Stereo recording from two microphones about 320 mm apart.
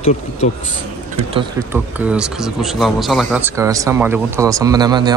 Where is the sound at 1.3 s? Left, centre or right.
Centre.